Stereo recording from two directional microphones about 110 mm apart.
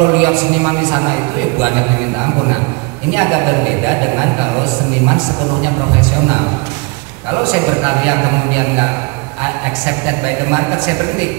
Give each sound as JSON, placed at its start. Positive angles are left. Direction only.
{"t": 0.0, "sound": "a man's voice", "side_deg": -15}
{"t": 3.1, "sound": "a man's voice", "side_deg": -15}
{"t": 7.4, "sound": "a man's voice", "side_deg": -15}